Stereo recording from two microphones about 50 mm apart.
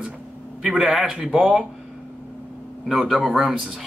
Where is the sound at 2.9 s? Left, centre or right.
Centre.